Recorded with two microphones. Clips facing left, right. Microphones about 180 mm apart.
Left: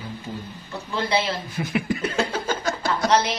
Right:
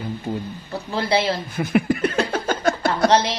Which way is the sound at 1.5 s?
55° right (ahead or behind).